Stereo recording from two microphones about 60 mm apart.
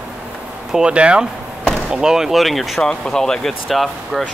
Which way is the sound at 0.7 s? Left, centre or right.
Centre.